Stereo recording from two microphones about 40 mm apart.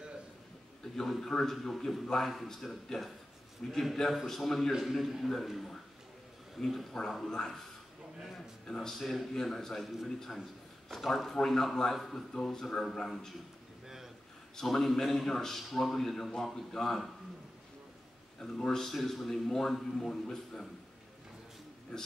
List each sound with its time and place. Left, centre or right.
0.8 s a man's voice: centre
7.2 s a man's voice: centre
8.6 s a man's voice: centre
13.8 s a sound: centre
14.6 s a man's voice: centre
18.6 s a man's voice: centre
21.9 s a man's voice: centre